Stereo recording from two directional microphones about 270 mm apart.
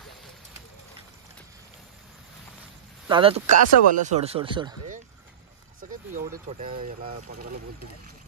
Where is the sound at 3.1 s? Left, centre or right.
Centre.